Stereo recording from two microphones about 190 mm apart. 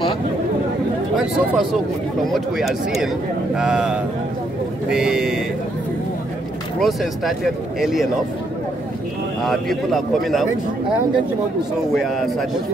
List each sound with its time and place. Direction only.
1.1 s a man's voice: 5° right (ahead or behind)
6.8 s a man's voice: centre (ahead or behind)
9.4 s a man's voice: centre (ahead or behind)
11.9 s a man's voice: centre (ahead or behind)